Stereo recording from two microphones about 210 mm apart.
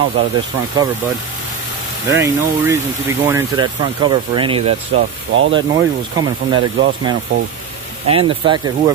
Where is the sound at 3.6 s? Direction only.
20° right (ahead or behind).